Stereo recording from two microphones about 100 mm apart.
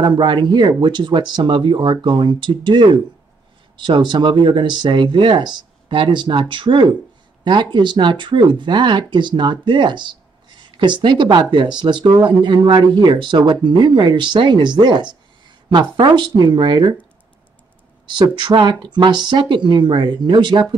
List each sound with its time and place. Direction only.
0.0 s speech: 50° right (ahead or behind)
18.0 s speech: 50° right (ahead or behind)